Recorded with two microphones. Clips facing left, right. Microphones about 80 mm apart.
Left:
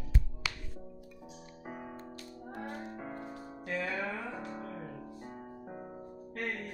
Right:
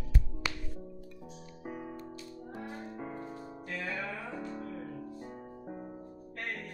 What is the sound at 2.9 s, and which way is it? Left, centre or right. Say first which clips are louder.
Music: right 1 dB; left.